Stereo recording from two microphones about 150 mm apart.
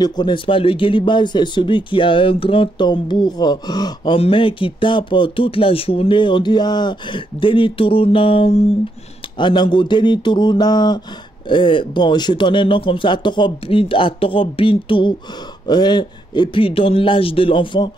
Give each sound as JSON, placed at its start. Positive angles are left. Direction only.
{"t": 0.0, "sound": "speech", "side_deg": 30}